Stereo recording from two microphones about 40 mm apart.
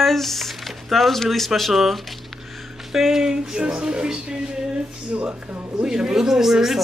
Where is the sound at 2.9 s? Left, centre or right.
Centre.